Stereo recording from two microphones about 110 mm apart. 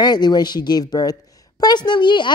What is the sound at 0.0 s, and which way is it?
A woman's voice, 40° left (ahead or behind).